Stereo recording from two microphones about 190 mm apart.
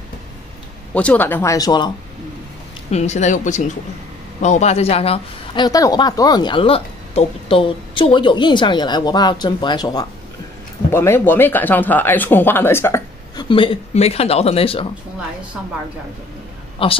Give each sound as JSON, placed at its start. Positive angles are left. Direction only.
{"t": 0.9, "sound": "speech", "side_deg": 10}
{"t": 2.9, "sound": "speech", "side_deg": 35}
{"t": 13.5, "sound": "speech", "side_deg": 25}
{"t": 16.8, "sound": "speech", "side_deg": 30}